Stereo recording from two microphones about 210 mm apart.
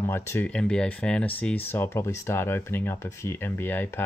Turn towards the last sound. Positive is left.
turn(degrees=10)  # may be behind; listen again after turning